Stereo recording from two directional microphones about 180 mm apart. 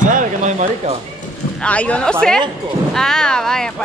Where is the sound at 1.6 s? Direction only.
5° left (ahead or behind).